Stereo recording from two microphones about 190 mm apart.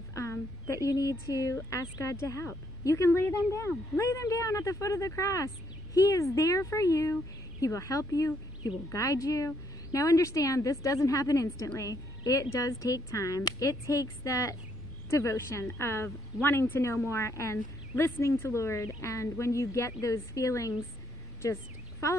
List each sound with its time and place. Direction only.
0.1 s a woman's voice: 15° left (ahead or behind)